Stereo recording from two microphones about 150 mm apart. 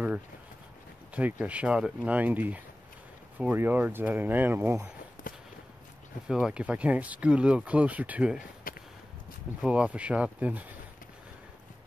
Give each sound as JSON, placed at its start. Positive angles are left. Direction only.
{"t": 1.1, "sound": "speech", "side_deg": -10}
{"t": 5.2, "sound": "walk", "side_deg": 65}
{"t": 6.2, "sound": "speech", "side_deg": -5}
{"t": 9.6, "sound": "speech", "side_deg": -5}